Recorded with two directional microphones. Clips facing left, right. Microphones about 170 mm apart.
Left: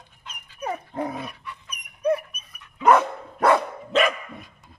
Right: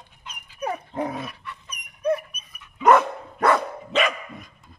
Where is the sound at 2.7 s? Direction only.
5° left (ahead or behind).